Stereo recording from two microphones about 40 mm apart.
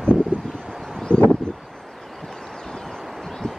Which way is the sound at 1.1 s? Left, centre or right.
Left.